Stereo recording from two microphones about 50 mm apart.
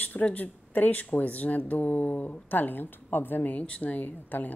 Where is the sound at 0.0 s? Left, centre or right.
Left.